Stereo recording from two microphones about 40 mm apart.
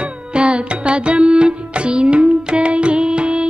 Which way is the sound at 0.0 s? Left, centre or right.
Right.